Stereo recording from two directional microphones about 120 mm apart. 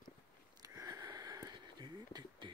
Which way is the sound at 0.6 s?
30° right (ahead or behind).